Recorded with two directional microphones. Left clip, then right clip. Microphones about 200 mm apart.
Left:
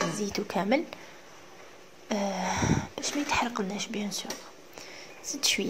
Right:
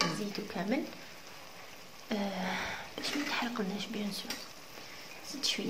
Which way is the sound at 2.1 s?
30° left (ahead or behind).